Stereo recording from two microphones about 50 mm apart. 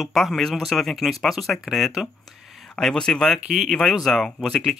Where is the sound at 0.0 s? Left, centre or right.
Centre.